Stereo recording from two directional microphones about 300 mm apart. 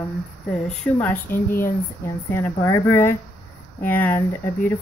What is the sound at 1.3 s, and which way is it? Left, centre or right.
Speech, left.